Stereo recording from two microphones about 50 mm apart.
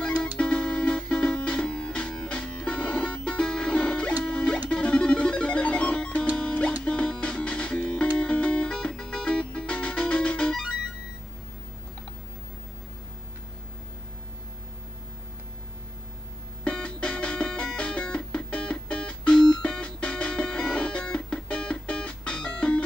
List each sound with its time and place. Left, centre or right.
0.0 s music: centre
10.5 s music: centre
16.6 s music: left